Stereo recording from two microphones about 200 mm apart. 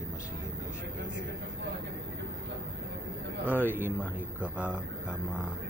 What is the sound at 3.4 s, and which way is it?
A man's voice, 10° right (ahead or behind).